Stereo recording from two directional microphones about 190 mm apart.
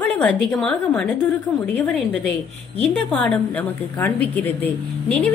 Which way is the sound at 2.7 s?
5° left (ahead or behind).